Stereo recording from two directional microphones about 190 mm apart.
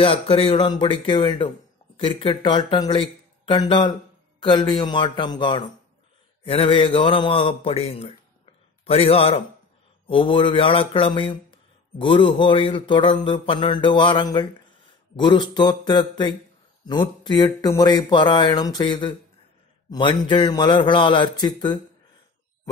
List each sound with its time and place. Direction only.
0.0 s a man's voice: 30° left (ahead or behind)